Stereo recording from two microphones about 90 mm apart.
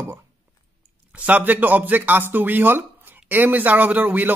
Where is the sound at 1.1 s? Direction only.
20° right (ahead or behind).